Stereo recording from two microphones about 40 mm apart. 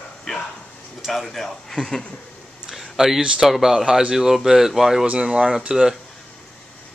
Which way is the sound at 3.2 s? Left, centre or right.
Centre.